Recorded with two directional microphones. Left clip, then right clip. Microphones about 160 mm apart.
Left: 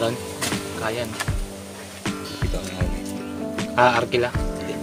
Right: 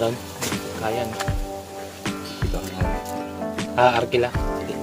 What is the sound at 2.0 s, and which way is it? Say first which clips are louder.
Music: left 2 dB; centre (ahead or behind).